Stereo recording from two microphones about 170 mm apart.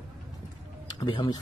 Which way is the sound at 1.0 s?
25° left (ahead or behind).